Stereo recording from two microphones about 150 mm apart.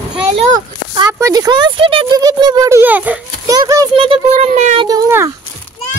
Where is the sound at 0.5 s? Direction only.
25° right (ahead or behind).